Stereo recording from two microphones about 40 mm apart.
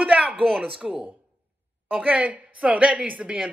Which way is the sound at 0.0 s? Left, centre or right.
Right.